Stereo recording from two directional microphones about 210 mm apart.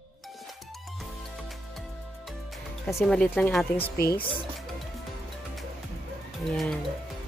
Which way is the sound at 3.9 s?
45° left (ahead or behind).